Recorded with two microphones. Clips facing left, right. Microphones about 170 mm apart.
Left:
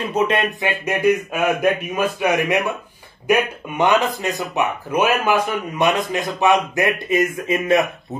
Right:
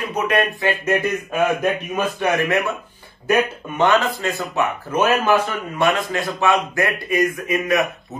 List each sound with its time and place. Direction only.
0.1 s music: 25° left (ahead or behind)
0.8 s speech: 15° left (ahead or behind)